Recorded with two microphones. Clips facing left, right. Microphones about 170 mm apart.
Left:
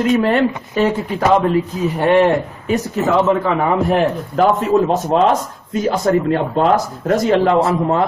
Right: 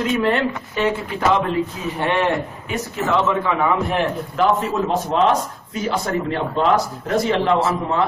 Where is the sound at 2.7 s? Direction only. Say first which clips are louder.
Left 6 dB; 40° left (ahead or behind).